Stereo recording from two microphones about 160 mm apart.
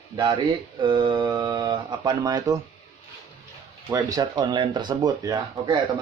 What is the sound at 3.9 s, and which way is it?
Speech, 20° right (ahead or behind).